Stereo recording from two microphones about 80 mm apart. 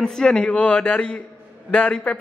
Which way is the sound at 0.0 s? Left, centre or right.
Centre.